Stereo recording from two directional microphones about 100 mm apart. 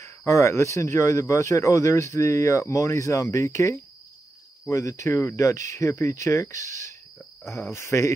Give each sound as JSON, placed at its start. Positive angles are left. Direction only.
{"t": 0.0, "sound": "speech", "side_deg": 30}